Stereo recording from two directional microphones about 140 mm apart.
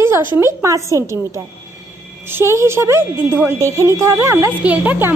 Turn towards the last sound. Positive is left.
turn(degrees=-15)  # may be behind; listen again after turning